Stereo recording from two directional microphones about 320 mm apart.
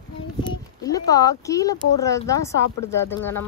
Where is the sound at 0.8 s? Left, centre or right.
Centre.